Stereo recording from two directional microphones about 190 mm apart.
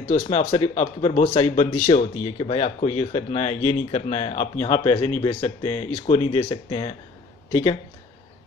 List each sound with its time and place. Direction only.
0.1 s speech: 35° left (ahead or behind)